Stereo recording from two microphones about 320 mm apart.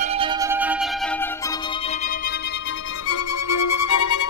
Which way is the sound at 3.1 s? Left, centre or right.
Left.